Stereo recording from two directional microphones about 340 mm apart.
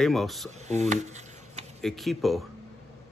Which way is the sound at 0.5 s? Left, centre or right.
Centre.